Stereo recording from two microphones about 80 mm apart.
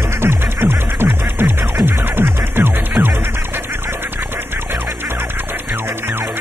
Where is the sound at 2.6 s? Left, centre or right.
Right.